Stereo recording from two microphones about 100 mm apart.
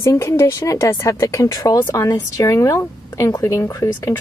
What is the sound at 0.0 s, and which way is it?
A woman's voice, 30° left (ahead or behind).